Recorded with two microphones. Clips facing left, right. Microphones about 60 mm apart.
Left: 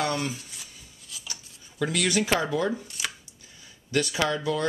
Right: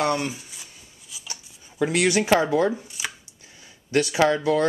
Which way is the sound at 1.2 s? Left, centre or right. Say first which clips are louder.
Right 5 dB; right.